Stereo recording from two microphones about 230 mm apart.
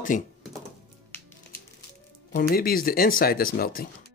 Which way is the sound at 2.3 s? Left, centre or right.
Left.